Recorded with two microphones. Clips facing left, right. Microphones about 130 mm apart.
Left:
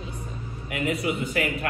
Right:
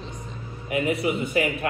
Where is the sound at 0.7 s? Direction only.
25° right (ahead or behind).